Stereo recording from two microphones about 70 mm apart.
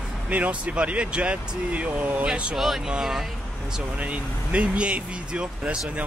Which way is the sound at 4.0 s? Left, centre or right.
Centre.